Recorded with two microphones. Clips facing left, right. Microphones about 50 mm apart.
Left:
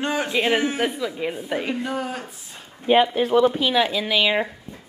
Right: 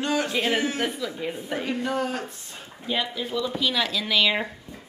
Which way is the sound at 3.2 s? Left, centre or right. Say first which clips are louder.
Left 11 dB; left.